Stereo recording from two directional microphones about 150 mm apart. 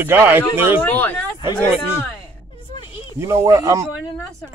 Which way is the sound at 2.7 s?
35° left (ahead or behind).